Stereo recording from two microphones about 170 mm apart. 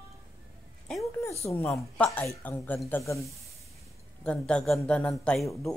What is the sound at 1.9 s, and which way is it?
Speech, 5° left (ahead or behind).